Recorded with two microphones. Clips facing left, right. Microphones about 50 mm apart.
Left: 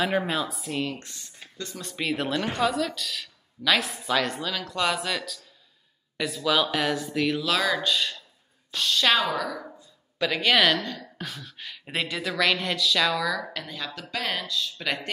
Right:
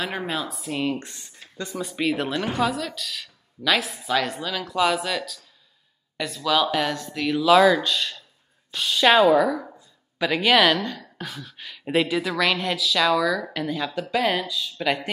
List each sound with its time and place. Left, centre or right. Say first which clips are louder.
0.0 s a woman's voice: left 2 dB; centre
0.8 s speech: right 7 dB; right
1.9 s a woman's voice: right 2 dB; centre
8.7 s a woman's voice: right 5 dB; centre